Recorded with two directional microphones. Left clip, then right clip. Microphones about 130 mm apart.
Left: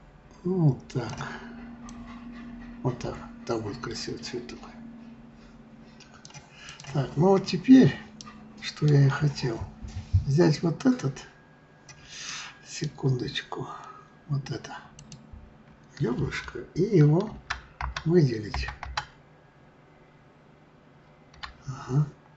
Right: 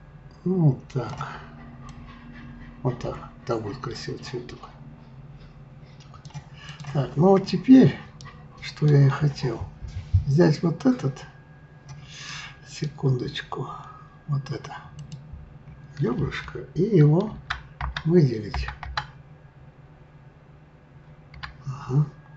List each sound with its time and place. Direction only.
0.5 s speech: 5° left (ahead or behind)
2.8 s speech: 5° left (ahead or behind)
6.9 s speech: 5° left (ahead or behind)
8.5 s a sound: centre (ahead or behind)
9.1 s speech: 5° left (ahead or behind)
12.1 s rub: 5° left (ahead or behind)
12.9 s speech: centre (ahead or behind)
16.3 s speech: 5° left (ahead or behind)
17.5 s typing: 15° left (ahead or behind)
18.0 s speech: 5° left (ahead or behind)
18.7 s computer keyboard: 15° left (ahead or behind)
21.6 s a sound: centre (ahead or behind)